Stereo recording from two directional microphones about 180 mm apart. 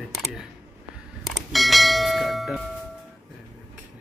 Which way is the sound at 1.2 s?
Centre (ahead or behind).